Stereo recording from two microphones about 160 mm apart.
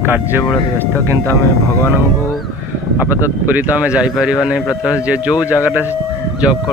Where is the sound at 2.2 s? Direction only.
Centre (ahead or behind).